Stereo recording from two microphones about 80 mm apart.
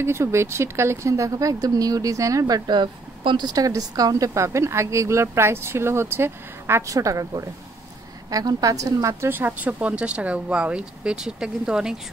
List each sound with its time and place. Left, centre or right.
0.0 s speech: right
6.9 s a woman's voice: right
9.3 s speech: right; by 12.0 s centre